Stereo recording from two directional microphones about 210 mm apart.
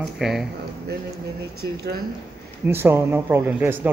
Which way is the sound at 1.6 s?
45° right (ahead or behind).